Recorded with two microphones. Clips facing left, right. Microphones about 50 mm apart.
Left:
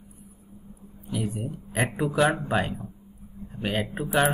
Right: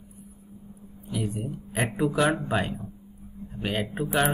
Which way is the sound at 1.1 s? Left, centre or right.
Centre.